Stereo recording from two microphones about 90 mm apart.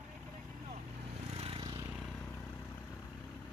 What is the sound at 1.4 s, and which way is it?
Vehicle, 80° right.